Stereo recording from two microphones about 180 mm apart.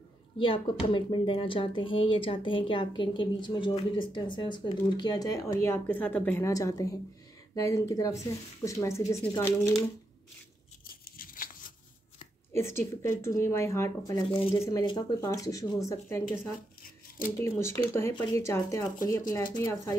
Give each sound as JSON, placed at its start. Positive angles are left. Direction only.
{"t": 0.4, "sound": "speech", "side_deg": 30}
{"t": 11.1, "sound": "scissors", "side_deg": 50}
{"t": 12.5, "sound": "speech", "side_deg": 15}